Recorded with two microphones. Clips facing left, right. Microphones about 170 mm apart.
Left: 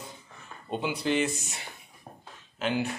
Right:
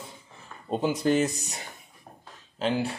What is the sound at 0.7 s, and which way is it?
Speech, 40° right (ahead or behind).